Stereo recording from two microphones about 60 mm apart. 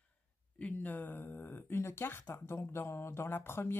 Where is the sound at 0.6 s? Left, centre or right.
Left.